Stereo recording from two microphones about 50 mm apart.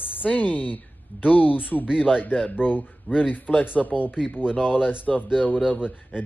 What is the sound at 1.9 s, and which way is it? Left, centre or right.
Speech, centre.